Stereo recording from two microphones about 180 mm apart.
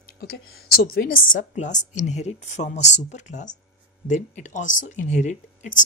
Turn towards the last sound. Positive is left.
turn(degrees=40)  # may be behind; listen again after turning